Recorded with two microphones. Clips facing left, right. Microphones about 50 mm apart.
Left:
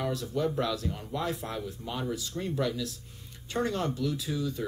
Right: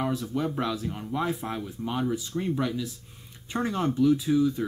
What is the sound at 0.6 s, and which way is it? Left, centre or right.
Speech, right.